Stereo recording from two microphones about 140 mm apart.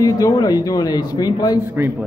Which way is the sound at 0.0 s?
25° left (ahead or behind).